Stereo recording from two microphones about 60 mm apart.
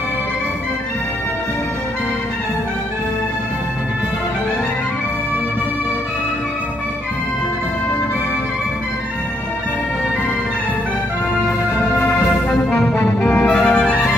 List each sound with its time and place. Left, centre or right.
12.1 s music: centre
13.0 s music: left
13.5 s music: centre